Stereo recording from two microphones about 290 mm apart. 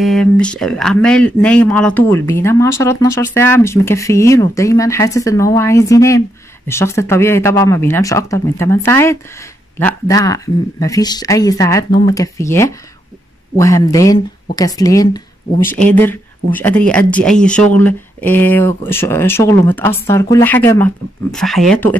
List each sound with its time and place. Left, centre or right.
0.0 s speech: centre